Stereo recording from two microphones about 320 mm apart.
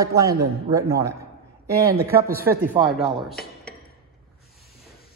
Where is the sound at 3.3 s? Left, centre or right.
Left.